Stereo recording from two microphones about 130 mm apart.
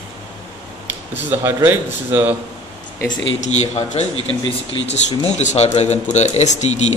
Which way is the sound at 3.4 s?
60° left (ahead or behind).